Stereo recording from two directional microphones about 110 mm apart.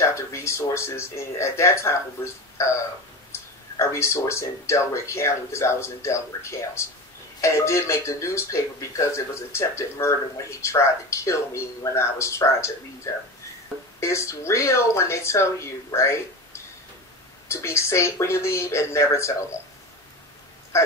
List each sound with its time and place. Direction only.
0.0 s speech: 25° left (ahead or behind)
3.3 s speech: 25° left (ahead or behind)
17.5 s speech: 25° left (ahead or behind)
20.7 s a sound: 25° left (ahead or behind)